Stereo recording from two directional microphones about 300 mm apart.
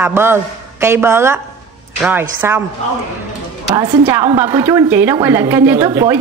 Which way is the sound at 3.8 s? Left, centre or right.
Centre.